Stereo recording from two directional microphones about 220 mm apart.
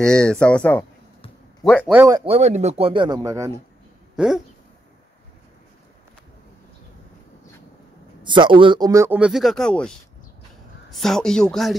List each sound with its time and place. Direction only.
0.0 s speech: 5° left (ahead or behind)
2.0 s speech: 20° right (ahead or behind)
4.2 s a sound: 5° right (ahead or behind)
8.2 s a man's voice: 20° right (ahead or behind); by 11.7 s centre (ahead or behind)